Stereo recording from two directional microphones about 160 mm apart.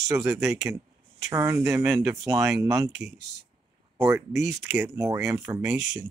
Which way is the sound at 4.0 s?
15° right (ahead or behind).